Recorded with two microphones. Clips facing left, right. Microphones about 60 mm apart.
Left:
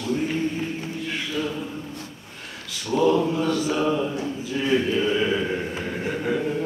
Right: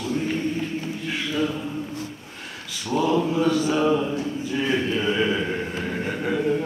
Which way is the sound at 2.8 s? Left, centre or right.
Centre.